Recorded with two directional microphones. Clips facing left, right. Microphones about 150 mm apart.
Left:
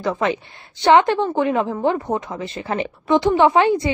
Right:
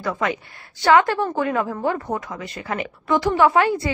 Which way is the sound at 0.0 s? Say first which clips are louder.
Left 3 dB; 25° left (ahead or behind).